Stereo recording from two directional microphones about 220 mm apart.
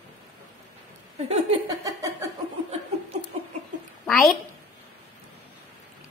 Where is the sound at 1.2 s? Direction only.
25° right (ahead or behind).